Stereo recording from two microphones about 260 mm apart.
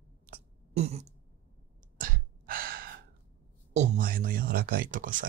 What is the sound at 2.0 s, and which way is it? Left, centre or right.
Gasp, right.